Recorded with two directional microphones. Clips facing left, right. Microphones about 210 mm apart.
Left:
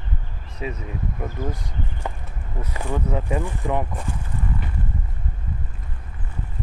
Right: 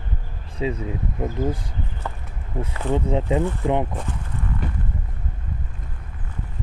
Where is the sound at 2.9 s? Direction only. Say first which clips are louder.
Right 4 dB; 20° right (ahead or behind).